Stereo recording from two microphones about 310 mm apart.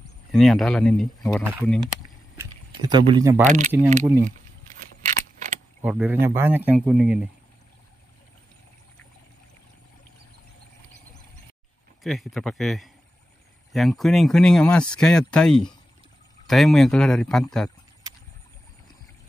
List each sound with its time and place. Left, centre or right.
0.3 s speech: centre
3.4 s speech: right
5.8 s speech: centre
12.0 s speech: centre